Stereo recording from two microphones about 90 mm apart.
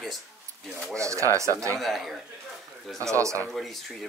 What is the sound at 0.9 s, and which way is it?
Speech, 35° right (ahead or behind).